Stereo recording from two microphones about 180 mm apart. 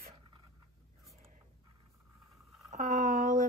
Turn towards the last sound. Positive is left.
turn(degrees=-40)  # may be behind; listen again after turning